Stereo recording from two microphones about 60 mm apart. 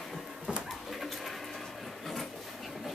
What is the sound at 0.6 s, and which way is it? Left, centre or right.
Dog, centre.